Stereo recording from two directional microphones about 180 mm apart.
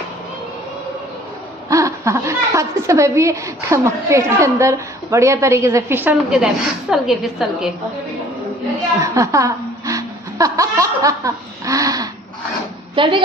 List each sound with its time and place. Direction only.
1.7 s a woman's voice: 15° right (ahead or behind)
9.0 s speech: 15° right (ahead or behind)